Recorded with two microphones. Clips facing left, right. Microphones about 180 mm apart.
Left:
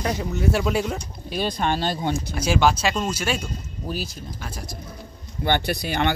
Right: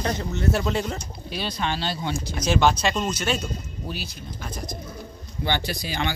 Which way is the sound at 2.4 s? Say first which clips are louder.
Even; 5° left (ahead or behind).